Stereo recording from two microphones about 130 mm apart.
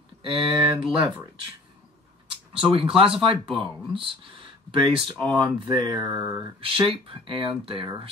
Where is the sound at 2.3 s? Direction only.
40° right (ahead or behind).